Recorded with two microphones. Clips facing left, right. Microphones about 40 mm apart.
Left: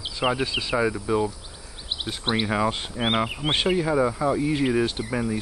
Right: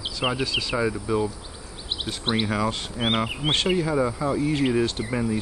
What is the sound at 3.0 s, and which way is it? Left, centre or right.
Speech, centre.